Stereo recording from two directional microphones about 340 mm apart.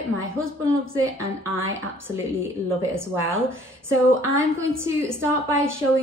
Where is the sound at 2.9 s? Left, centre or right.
Centre.